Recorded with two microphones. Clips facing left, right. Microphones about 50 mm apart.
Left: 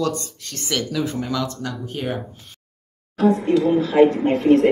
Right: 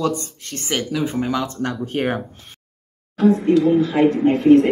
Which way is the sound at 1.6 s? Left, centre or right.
Right.